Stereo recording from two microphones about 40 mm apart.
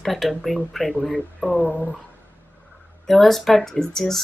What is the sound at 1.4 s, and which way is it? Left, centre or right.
Speech, centre.